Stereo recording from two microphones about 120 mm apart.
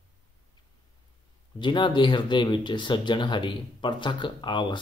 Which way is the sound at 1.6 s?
40° left (ahead or behind).